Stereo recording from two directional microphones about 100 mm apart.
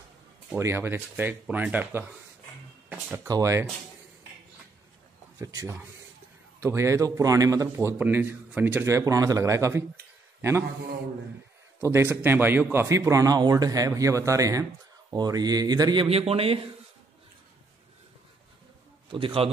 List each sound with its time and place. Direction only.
0.6 s speech: 25° right (ahead or behind)
3.3 s speech: 35° right (ahead or behind)
5.4 s speech: 35° right (ahead or behind)
7.7 s speech: 20° right (ahead or behind)
11.8 s speech: 25° right (ahead or behind); by 16.1 s 45° right (ahead or behind)
16.1 s a man's voice: 75° right (ahead or behind)
19.0 s a man's voice: 60° right (ahead or behind)